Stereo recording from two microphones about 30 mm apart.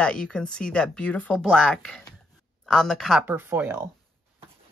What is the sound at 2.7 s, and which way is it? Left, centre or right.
Speech, centre.